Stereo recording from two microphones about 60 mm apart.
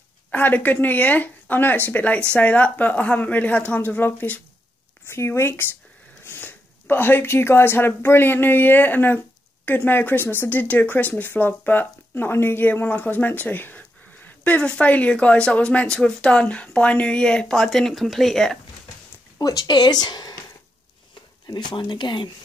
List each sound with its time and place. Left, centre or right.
0.3 s speech: left
5.0 s speech: left; by 18.6 s centre
19.3 s speech: left